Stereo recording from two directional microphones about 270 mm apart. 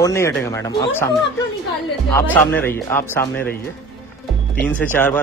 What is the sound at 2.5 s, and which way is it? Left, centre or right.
Speech, centre.